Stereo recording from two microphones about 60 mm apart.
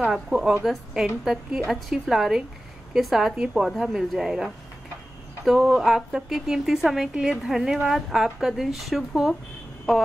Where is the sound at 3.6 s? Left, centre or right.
Centre.